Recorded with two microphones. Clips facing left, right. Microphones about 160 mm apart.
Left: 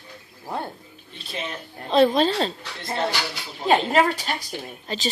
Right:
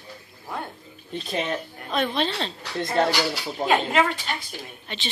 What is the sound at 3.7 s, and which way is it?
Speech, 40° left (ahead or behind).